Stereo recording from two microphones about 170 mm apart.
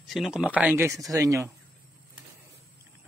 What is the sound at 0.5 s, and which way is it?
Speech, 10° right (ahead or behind).